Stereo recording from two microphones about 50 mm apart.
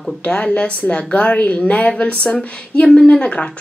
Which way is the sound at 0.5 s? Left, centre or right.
Left.